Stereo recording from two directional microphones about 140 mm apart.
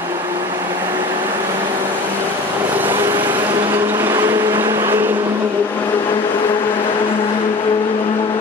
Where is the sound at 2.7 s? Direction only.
15° right (ahead or behind).